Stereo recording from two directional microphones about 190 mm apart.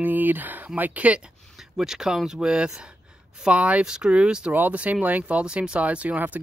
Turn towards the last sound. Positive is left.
turn(degrees=-10)  # may be behind; listen again after turning